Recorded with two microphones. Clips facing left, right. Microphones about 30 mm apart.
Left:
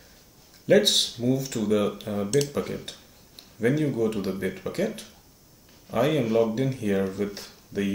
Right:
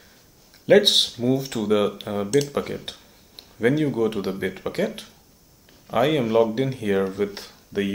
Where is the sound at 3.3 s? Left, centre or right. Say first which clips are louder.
Right 3 dB; right.